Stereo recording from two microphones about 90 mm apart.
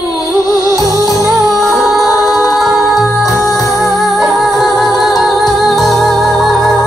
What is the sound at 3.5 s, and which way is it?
Music, 40° left (ahead or behind).